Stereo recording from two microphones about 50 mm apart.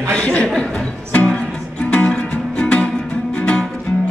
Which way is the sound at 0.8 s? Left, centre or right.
Left.